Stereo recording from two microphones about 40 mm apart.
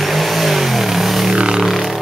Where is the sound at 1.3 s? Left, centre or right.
Right.